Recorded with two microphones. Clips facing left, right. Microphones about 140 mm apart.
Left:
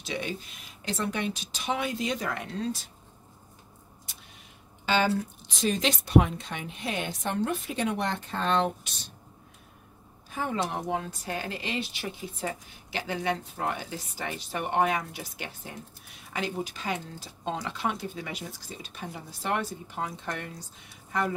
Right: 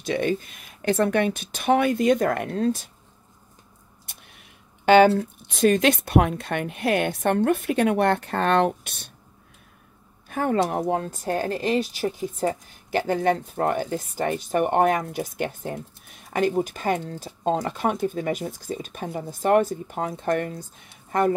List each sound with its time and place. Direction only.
0.0 s speech: 50° right (ahead or behind)
4.1 s a sound: 55° right (ahead or behind)
4.8 s speech: 60° right (ahead or behind)
10.3 s speech: 55° right (ahead or behind)